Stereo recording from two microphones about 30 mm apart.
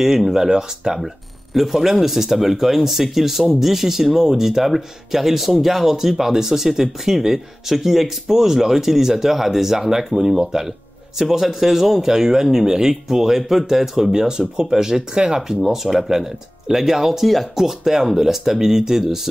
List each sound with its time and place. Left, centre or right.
0.3 s speech: centre
0.9 s speech: centre; by 10.7 s right
11.1 s speech: centre
14.2 s speech: right